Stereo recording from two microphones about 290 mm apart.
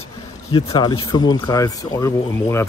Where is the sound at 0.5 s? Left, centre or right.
Centre.